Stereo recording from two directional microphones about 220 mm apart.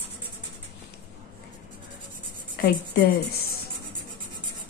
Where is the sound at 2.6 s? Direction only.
45° left (ahead or behind).